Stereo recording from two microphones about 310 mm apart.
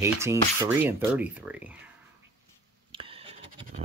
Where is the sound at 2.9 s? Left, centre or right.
Centre.